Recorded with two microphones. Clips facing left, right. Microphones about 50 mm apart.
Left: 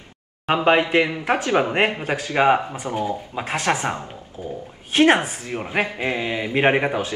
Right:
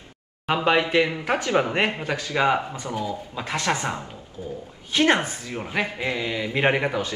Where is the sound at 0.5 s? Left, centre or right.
Left.